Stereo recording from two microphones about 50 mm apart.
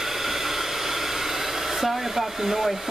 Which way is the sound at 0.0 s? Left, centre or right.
Centre.